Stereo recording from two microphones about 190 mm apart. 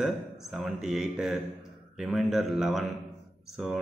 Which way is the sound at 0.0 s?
Centre (ahead or behind).